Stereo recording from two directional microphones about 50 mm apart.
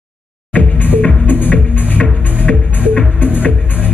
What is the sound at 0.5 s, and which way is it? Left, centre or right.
Music, left.